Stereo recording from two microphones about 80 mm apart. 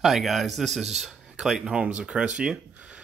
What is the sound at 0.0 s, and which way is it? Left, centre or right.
Speech, centre.